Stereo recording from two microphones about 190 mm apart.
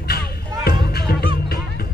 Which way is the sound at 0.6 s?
55° left (ahead or behind).